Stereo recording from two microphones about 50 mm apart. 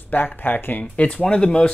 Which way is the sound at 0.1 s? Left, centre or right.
Left.